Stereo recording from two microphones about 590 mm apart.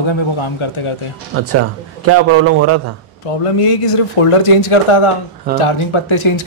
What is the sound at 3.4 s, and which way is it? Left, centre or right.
A man's voice, left.